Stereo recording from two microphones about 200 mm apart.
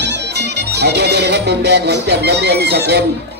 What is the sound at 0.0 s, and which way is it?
Music, 60° right (ahead or behind).